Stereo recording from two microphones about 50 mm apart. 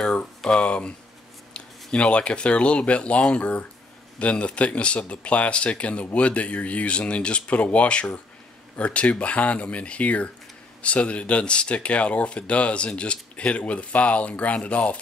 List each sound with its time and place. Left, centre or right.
0.6 s speech: left